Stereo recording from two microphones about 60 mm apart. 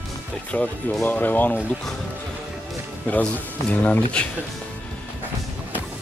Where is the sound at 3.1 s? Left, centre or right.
Left.